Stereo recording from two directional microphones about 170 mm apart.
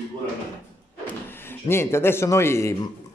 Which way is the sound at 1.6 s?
15° left (ahead or behind).